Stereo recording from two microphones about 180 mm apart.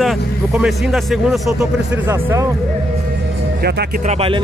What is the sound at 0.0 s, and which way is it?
Speech, centre (ahead or behind).